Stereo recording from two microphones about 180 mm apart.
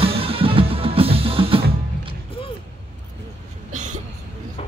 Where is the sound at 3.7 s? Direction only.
40° right (ahead or behind).